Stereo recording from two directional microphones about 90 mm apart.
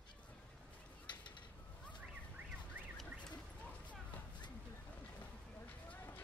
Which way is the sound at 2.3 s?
20° right (ahead or behind).